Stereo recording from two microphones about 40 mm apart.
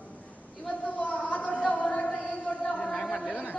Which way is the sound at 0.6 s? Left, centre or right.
Left.